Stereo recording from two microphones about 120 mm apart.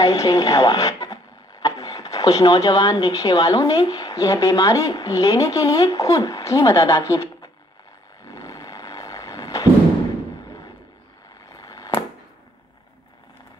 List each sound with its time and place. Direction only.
0.0 s speech: 30° left (ahead or behind)
8.3 s roar: 30° left (ahead or behind)
11.5 s chop: 30° left (ahead or behind)